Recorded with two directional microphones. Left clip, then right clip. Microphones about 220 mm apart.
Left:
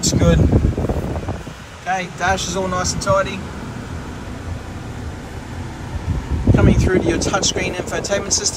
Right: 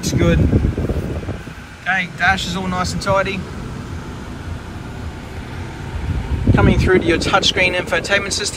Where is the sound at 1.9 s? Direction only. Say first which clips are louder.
Right 3 dB; 15° left (ahead or behind).